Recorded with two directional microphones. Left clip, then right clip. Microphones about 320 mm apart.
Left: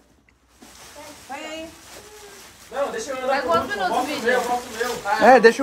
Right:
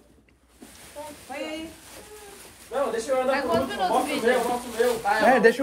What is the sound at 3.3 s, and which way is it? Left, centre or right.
Speech, left.